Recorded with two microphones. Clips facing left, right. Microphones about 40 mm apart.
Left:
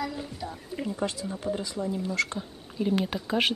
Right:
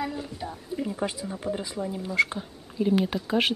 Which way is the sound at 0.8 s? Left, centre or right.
Centre.